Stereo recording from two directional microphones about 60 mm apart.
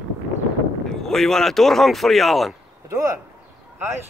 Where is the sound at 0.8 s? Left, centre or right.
Centre.